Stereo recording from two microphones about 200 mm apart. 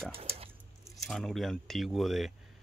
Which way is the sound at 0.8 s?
Centre (ahead or behind).